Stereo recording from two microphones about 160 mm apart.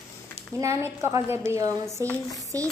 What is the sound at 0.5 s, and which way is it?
A woman's voice, 20° right (ahead or behind).